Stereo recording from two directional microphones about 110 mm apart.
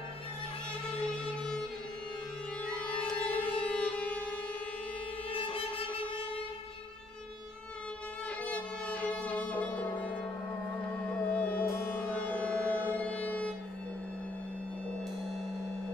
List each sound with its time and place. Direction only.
2.6 s music: 10° left (ahead or behind)
5.3 s music: 55° left (ahead or behind)
8.5 s music: 10° left (ahead or behind)
11.3 s music: 15° left (ahead or behind)
11.6 s civil defense siren: 20° left (ahead or behind)